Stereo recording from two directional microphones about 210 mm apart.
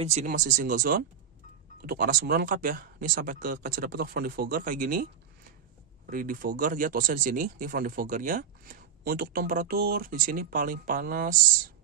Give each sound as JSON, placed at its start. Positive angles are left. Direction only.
{"t": 0.0, "sound": "speech", "side_deg": -35}